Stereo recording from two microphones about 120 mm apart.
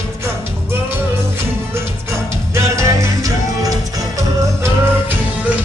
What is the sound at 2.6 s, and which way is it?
Music, 25° right (ahead or behind).